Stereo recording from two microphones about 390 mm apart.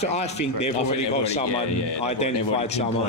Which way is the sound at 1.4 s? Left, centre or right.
Left.